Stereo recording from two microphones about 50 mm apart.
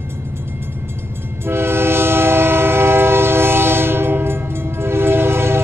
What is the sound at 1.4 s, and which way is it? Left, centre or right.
Train, right.